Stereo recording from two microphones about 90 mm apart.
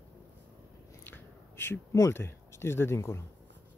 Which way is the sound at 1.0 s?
25° left (ahead or behind).